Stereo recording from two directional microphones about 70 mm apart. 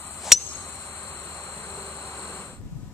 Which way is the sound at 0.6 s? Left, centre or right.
Left.